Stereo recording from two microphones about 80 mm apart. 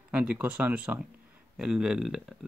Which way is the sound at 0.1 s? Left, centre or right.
Centre.